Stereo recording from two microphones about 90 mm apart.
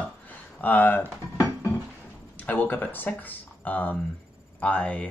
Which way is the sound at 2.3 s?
20° left (ahead or behind).